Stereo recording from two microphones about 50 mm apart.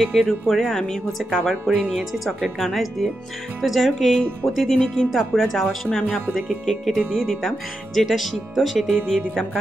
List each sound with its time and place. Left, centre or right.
0.0 s speech: centre
5.9 s speech: centre
6.1 s speech: centre